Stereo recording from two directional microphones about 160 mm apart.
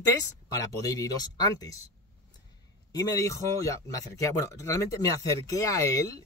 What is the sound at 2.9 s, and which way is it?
A man's voice, 20° left (ahead or behind).